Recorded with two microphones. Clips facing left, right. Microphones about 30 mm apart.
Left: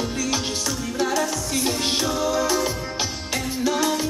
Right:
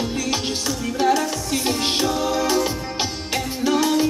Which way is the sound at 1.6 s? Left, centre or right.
Centre.